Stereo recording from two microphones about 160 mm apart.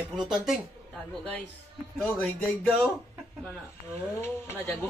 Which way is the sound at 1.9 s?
10° left (ahead or behind).